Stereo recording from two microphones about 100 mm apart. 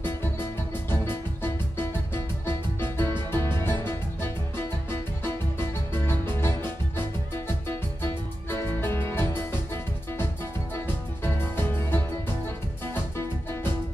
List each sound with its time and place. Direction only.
0.0 s music: 20° left (ahead or behind)
3.3 s music: 50° right (ahead or behind)
3.6 s music: 25° left (ahead or behind)
6.0 s music: 25° left (ahead or behind)
11.2 s music: 25° left (ahead or behind)